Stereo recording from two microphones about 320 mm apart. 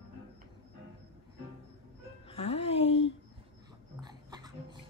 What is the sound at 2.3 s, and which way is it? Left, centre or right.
Music, centre.